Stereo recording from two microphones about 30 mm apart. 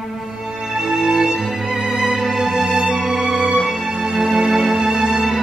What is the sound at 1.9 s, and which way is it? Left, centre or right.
Music, right.